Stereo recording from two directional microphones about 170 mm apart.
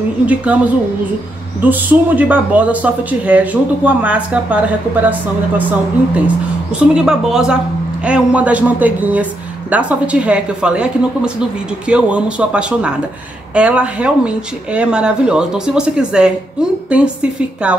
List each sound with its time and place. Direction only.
0.3 s speech: 10° right (ahead or behind)
6.8 s speech: 5° right (ahead or behind)